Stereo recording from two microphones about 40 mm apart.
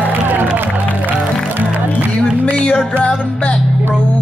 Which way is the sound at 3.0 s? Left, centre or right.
Left.